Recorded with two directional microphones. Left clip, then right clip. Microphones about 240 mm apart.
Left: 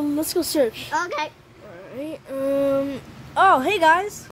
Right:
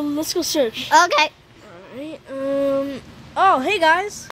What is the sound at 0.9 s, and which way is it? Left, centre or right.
Speech, right.